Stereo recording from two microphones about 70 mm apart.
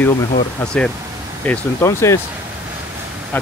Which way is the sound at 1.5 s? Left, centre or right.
Left.